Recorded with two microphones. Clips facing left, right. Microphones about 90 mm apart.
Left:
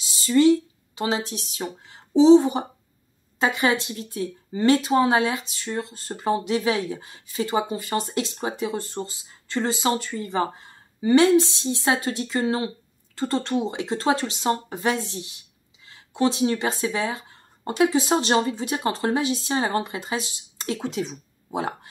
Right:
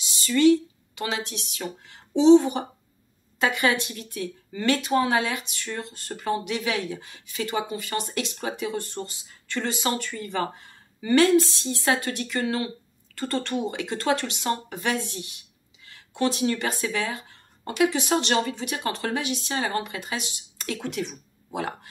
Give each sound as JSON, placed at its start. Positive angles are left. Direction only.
{"t": 0.2, "sound": "speech", "side_deg": 25}